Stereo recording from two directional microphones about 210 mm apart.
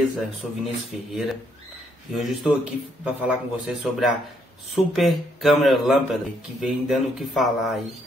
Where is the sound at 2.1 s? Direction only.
Centre (ahead or behind).